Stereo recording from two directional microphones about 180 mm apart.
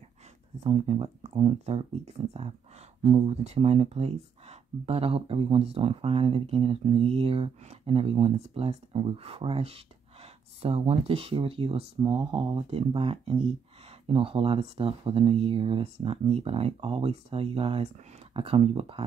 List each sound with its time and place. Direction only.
0.7 s speech: 35° right (ahead or behind)